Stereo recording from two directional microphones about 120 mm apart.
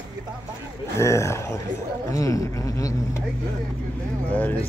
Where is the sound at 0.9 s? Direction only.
25° left (ahead or behind).